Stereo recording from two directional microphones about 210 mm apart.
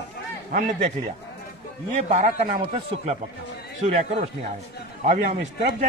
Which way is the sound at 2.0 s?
35° right (ahead or behind).